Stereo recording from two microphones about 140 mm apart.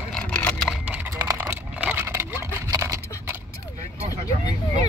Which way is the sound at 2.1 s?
20° right (ahead or behind).